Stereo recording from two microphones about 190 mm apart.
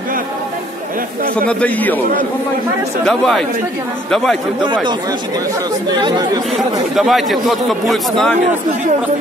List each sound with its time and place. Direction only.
1.5 s a man's voice: 10° left (ahead or behind)
3.1 s a man's voice: 5° left (ahead or behind)
5.9 s speech: 25° right (ahead or behind)
7.0 s a man's voice: centre (ahead or behind)